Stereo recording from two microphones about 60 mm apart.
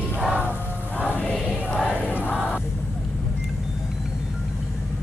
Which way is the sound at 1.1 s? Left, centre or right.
Left.